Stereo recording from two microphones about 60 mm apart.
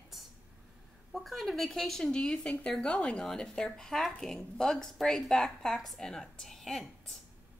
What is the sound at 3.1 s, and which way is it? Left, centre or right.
A woman's voice, centre.